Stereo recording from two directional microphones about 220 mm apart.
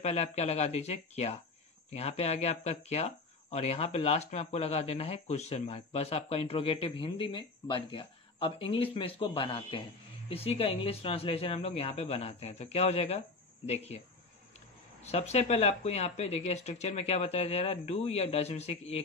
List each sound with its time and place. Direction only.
0.0 s speech: 30° left (ahead or behind)